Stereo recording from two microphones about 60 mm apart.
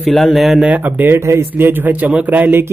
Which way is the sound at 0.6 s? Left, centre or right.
Right.